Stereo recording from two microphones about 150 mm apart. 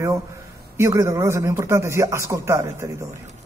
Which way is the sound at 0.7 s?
20° right (ahead or behind).